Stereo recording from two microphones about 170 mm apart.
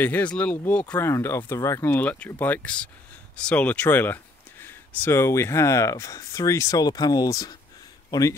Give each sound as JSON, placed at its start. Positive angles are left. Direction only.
{"t": 0.0, "sound": "speech", "side_deg": 10}